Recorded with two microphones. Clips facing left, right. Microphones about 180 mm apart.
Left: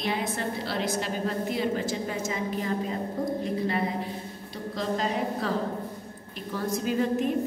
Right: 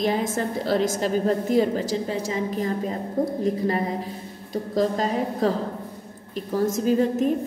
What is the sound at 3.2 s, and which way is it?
Speech, 50° right (ahead or behind).